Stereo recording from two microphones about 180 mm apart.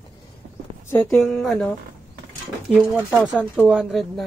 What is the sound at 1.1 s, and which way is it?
Speech, centre (ahead or behind).